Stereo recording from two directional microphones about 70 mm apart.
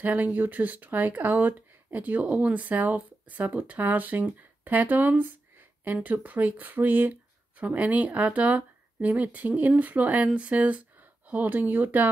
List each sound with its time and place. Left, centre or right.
0.0 s speech: right